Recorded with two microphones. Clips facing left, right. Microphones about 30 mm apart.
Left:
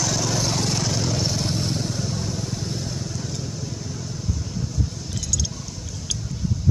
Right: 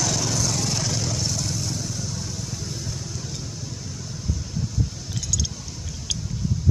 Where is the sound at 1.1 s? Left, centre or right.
Left.